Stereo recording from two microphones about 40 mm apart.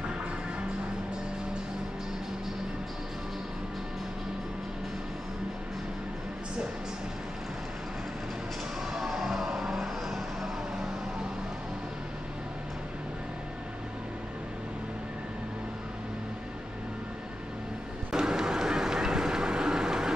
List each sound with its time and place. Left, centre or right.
8.9 s music: centre
9.6 s vehicle: centre
18.1 s vehicle: centre